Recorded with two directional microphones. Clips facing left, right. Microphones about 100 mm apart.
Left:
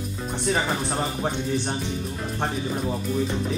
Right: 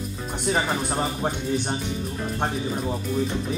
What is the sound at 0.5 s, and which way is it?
Speech, 10° right (ahead or behind).